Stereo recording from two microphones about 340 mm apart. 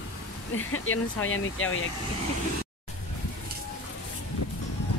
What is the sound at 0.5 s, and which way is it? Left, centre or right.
Speech, left.